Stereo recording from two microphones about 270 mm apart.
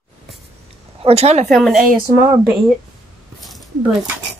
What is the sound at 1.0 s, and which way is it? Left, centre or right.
Speech, right.